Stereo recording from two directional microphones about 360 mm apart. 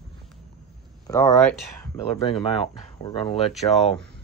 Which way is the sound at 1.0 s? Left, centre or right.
Centre.